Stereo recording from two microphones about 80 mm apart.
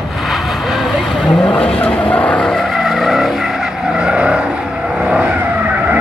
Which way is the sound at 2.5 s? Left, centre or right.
Centre.